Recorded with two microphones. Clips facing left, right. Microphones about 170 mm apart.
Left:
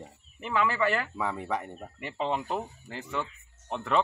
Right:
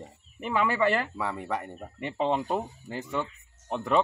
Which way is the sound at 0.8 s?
30° right (ahead or behind).